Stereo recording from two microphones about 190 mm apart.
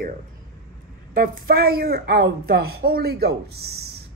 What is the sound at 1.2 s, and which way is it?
A woman's voice, 50° right (ahead or behind).